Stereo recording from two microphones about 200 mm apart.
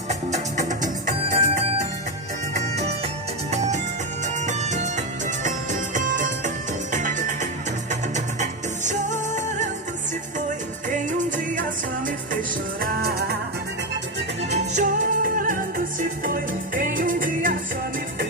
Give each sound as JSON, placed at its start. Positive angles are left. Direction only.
{"t": 0.1, "sound": "music", "side_deg": -35}
{"t": 3.5, "sound": "music", "side_deg": -35}
{"t": 10.9, "sound": "music", "side_deg": -40}
{"t": 12.8, "sound": "music", "side_deg": -50}
{"t": 14.7, "sound": "music", "side_deg": -40}